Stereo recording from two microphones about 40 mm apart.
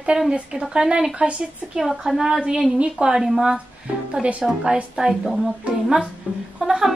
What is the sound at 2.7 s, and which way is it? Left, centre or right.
Music, right.